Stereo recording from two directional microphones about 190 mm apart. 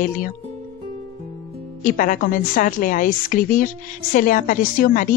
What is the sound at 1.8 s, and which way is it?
A woman's voice, 45° left (ahead or behind).